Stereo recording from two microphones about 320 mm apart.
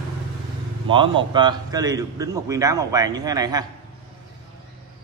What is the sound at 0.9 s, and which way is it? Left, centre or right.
A man's voice, centre.